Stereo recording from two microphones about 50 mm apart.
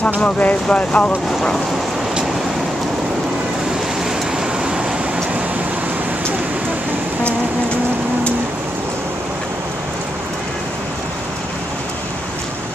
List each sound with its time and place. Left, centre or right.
0.2 s speech: left